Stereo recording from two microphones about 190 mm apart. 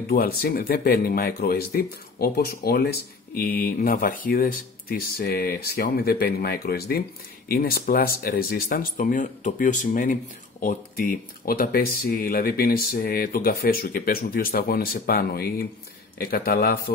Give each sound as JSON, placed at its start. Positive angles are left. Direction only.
{"t": 0.0, "sound": "speech", "side_deg": 55}